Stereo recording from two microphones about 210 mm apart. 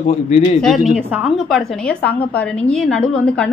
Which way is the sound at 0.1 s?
30° left (ahead or behind).